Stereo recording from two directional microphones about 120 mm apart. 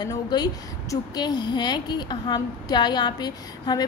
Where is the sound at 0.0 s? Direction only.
35° left (ahead or behind).